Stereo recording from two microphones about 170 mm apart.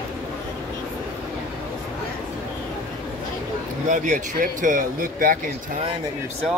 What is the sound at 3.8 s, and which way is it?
Speech, 50° right (ahead or behind).